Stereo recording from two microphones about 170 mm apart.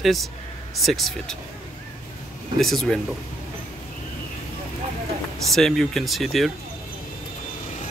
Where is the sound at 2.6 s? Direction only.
Centre (ahead or behind).